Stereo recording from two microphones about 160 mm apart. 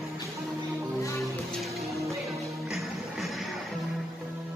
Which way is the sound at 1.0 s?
20° left (ahead or behind).